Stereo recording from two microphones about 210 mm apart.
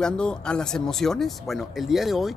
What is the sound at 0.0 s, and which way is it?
Speech, 5° left (ahead or behind).